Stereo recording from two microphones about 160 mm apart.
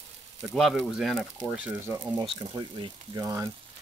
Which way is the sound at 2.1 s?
30° right (ahead or behind).